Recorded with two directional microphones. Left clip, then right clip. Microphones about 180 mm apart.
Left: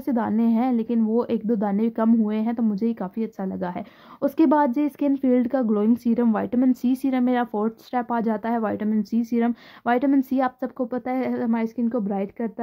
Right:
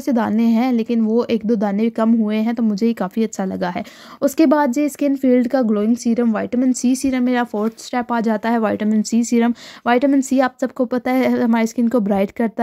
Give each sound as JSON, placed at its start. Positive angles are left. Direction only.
{"t": 0.0, "sound": "a woman's voice", "side_deg": -20}